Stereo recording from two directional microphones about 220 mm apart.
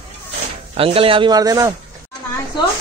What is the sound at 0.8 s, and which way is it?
Speech, 25° right (ahead or behind).